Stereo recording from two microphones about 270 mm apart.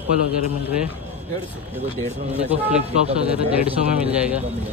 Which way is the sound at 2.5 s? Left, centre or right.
Centre.